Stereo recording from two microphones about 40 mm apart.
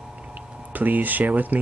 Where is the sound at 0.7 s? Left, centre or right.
Right.